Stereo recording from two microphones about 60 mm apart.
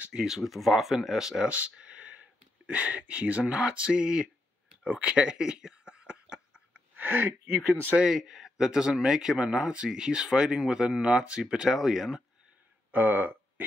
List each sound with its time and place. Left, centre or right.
0.0 s speech: centre
0.4 s speech: centre
4.8 s a sound: centre
7.0 s speech: right
7.9 s speech: centre
12.9 s speech: right